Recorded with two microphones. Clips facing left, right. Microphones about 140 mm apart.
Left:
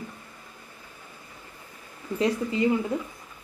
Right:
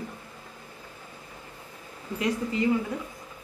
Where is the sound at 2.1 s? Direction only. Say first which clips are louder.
Left 2 dB; 20° left (ahead or behind).